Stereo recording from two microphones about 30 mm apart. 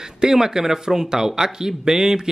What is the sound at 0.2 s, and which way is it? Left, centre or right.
Speech, right.